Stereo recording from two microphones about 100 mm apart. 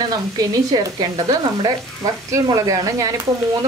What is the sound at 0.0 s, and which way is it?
Sizzle, 40° right (ahead or behind).